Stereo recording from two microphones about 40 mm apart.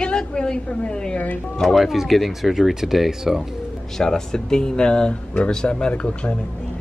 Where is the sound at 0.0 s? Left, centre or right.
Left.